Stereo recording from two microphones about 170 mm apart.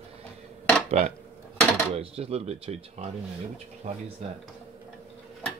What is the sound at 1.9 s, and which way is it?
Speech, 35° right (ahead or behind).